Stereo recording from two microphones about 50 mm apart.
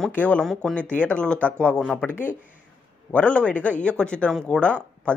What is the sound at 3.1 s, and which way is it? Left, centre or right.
Speech, left.